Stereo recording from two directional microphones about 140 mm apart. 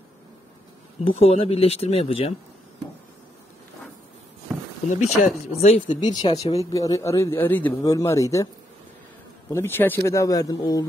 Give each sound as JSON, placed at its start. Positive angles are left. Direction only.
{"t": 1.1, "sound": "speech", "side_deg": 45}
{"t": 4.9, "sound": "speech", "side_deg": 55}
{"t": 5.9, "sound": "speech", "side_deg": 30}
{"t": 9.5, "sound": "speech", "side_deg": 15}